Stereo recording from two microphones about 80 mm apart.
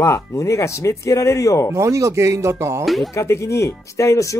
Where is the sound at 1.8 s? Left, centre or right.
Right.